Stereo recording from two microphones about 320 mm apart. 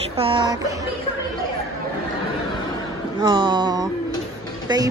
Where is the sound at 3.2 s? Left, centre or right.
Centre.